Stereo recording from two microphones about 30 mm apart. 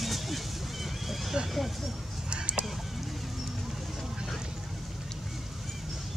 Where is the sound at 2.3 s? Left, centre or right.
Right.